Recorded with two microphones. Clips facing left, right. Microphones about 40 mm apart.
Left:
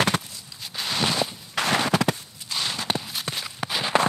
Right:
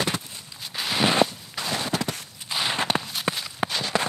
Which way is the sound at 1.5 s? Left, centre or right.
Left.